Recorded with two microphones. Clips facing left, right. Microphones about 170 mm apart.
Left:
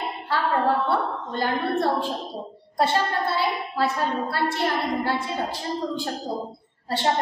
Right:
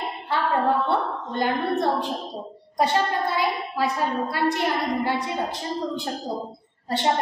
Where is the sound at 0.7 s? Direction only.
Centre (ahead or behind).